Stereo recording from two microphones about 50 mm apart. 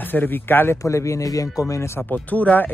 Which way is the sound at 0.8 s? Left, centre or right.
Left.